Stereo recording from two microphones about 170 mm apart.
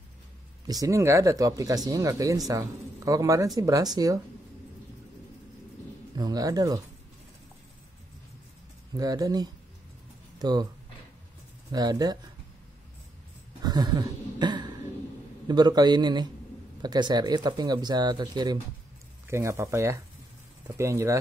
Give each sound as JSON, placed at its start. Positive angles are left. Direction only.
{"t": 0.7, "sound": "speech", "side_deg": -20}
{"t": 6.1, "sound": "speech", "side_deg": -20}
{"t": 8.9, "sound": "speech", "side_deg": -20}
{"t": 11.7, "sound": "speech", "side_deg": -25}
{"t": 13.6, "sound": "a sound", "side_deg": -25}
{"t": 15.4, "sound": "speech", "side_deg": -25}